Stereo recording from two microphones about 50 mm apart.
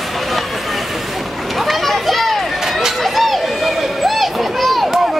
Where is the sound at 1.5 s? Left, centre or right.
Centre.